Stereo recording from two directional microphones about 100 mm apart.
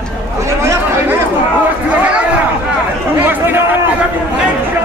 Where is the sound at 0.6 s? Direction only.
30° right (ahead or behind).